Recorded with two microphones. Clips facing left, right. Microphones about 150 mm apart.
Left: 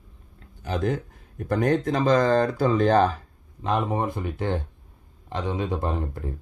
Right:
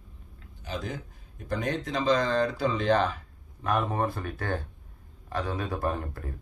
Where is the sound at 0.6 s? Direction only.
55° left (ahead or behind).